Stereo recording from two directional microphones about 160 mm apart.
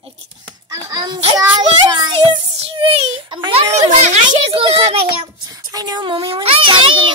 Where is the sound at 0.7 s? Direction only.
25° right (ahead or behind).